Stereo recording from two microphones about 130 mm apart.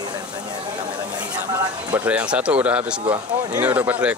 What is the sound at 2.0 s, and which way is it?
Speech, 10° right (ahead or behind).